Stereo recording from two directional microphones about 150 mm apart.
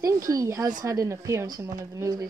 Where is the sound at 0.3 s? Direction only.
20° right (ahead or behind).